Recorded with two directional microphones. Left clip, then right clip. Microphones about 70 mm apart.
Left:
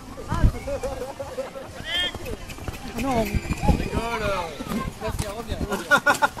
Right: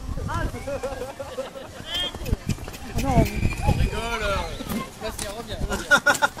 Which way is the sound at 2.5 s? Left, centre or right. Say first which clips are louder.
Right 1 dB; right.